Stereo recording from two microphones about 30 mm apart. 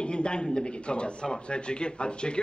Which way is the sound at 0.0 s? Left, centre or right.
Left.